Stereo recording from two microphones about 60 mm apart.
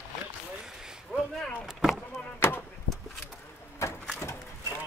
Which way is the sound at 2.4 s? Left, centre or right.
Left.